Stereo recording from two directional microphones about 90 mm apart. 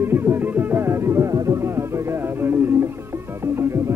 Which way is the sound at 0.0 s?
25° right (ahead or behind).